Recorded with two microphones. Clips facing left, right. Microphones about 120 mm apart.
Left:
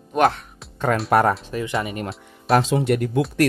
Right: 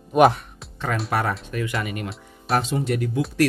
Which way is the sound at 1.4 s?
25° left (ahead or behind).